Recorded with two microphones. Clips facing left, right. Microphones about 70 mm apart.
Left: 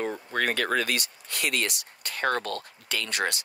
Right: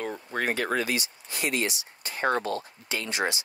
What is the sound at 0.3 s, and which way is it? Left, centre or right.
Speech, left.